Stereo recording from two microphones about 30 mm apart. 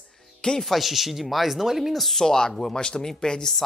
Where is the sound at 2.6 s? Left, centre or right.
Left.